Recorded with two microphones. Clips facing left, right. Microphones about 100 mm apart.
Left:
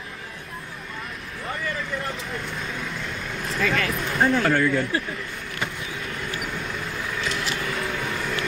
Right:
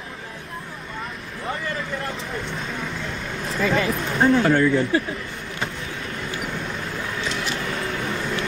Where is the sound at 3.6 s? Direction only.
15° right (ahead or behind).